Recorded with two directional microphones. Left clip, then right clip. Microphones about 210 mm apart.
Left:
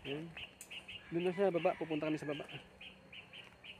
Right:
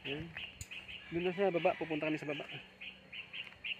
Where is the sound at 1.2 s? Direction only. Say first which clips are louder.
Right 1 dB; 10° right (ahead or behind).